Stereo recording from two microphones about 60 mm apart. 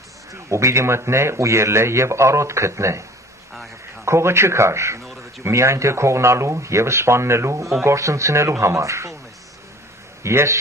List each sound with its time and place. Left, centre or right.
0.3 s a man's voice: right
10.2 s a man's voice: right